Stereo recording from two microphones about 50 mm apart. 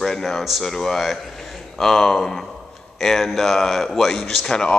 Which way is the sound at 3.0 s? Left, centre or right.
Centre.